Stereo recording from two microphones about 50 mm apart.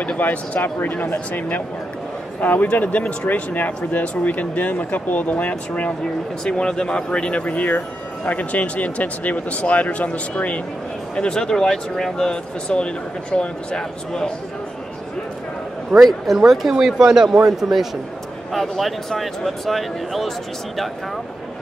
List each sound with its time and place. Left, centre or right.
0.2 s speech: left
0.6 s speech: left
6.4 s speech: centre
11.1 s speech: centre
16.1 s speech: centre